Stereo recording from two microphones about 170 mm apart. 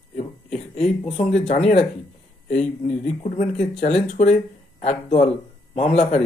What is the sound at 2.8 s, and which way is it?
Speech, 40° left (ahead or behind).